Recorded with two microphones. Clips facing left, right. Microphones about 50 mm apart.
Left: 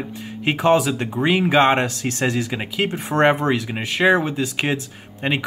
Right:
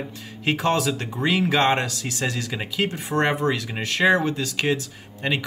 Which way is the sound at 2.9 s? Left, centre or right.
Left.